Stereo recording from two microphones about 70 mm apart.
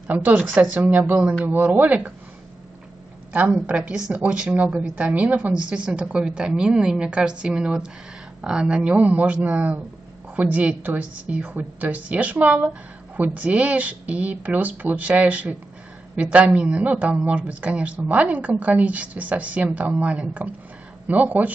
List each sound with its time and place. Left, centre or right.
0.1 s a woman's voice: right
3.3 s a woman's voice: right